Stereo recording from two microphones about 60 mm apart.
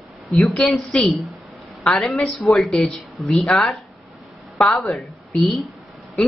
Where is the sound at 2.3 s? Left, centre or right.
Centre.